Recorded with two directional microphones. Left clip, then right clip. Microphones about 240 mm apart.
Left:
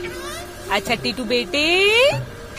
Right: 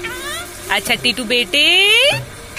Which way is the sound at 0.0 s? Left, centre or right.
Centre.